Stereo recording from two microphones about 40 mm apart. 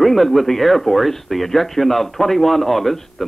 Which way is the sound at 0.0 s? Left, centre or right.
Centre.